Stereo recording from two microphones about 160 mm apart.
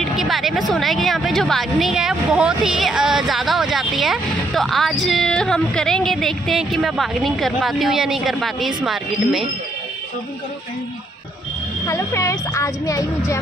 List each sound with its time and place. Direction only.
0.0 s speech: centre (ahead or behind)
11.8 s speech: 20° left (ahead or behind)